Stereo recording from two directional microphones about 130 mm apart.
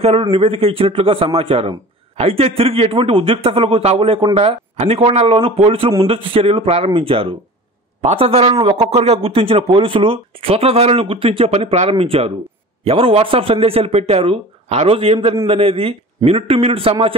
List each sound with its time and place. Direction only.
0.0 s a man's voice: 45° right (ahead or behind)